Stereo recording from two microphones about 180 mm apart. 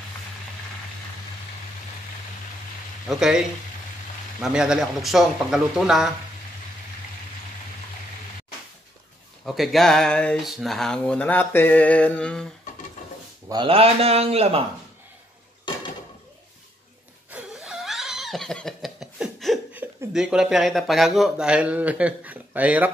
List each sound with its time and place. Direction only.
3.1 s speech: 5° right (ahead or behind)
9.4 s speech: centre (ahead or behind)
13.5 s a man's voice: 30° right (ahead or behind)
17.3 s laughter: 5° right (ahead or behind)
19.7 s speech: 10° right (ahead or behind)